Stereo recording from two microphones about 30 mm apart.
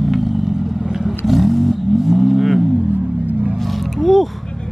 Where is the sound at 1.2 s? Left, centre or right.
Centre.